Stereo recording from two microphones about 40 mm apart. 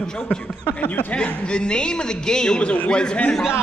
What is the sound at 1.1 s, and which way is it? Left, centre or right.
A man's voice, left.